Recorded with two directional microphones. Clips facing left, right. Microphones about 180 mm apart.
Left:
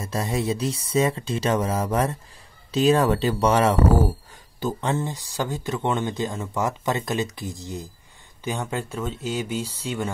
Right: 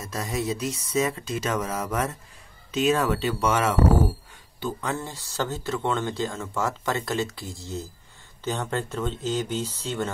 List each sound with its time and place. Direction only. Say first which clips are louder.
0.0 s speech: left 3 dB; 30° left (ahead or behind)
4.7 s speech: left 5 dB; 25° left (ahead or behind)